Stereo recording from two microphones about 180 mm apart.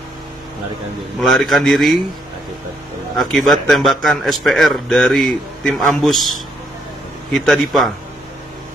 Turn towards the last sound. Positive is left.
turn(degrees=0)  # may be behind; listen again after turning